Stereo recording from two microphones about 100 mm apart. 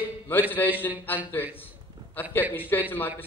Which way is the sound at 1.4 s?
20° left (ahead or behind).